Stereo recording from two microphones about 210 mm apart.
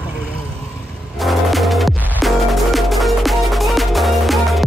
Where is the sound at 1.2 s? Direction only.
Centre (ahead or behind).